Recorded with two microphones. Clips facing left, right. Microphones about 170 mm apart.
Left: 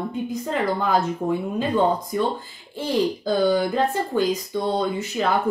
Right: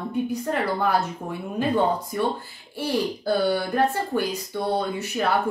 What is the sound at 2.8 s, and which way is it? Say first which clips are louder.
Speech: left 2 dB; 15° left (ahead or behind).